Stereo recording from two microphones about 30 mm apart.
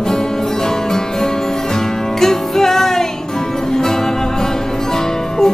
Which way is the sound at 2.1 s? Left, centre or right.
Centre.